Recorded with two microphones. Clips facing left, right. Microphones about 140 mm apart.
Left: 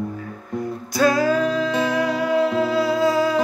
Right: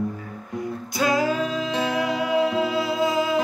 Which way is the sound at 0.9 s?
20° right (ahead or behind).